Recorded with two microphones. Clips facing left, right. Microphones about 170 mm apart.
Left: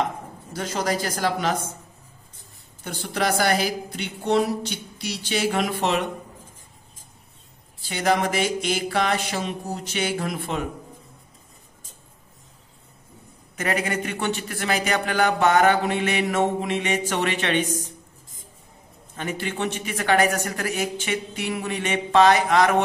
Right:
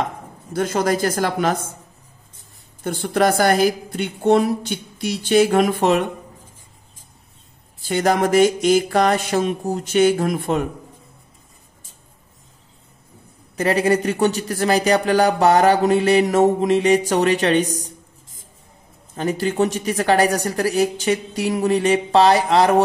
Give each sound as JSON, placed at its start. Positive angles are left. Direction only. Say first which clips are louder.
{"t": 0.5, "sound": "a woman's voice", "louder": "right 6 dB", "side_deg": -55}
{"t": 2.8, "sound": "a woman's voice", "louder": "right 8 dB", "side_deg": -50}
{"t": 7.8, "sound": "a woman's voice", "louder": "right 4 dB", "side_deg": -50}
{"t": 13.6, "sound": "speech", "louder": "right 8 dB", "side_deg": -35}
{"t": 19.1, "sound": "speech", "louder": "right 9 dB", "side_deg": -40}